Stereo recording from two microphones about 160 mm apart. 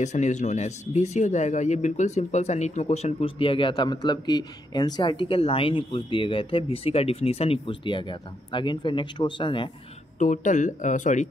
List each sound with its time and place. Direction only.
0.0 s speech: 50° left (ahead or behind); by 9.7 s 30° left (ahead or behind)
10.1 s speech: 50° left (ahead or behind)